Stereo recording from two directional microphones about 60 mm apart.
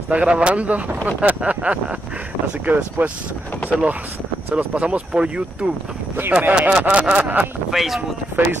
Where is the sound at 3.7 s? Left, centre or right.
Centre.